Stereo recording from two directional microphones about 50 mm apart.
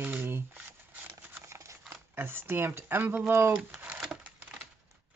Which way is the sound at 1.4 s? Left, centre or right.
Right.